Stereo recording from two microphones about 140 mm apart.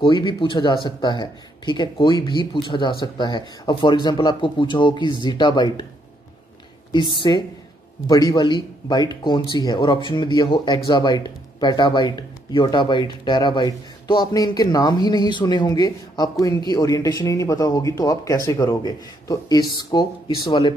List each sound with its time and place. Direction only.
0.0 s speech: 35° left (ahead or behind)
6.9 s speech: 35° left (ahead or behind)